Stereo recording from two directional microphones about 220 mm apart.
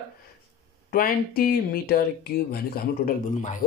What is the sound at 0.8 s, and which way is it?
Speech, 40° left (ahead or behind).